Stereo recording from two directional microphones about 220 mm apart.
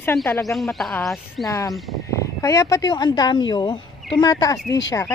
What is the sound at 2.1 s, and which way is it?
Speech, 15° left (ahead or behind).